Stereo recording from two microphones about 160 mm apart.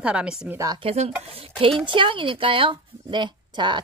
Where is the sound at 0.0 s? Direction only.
5° right (ahead or behind).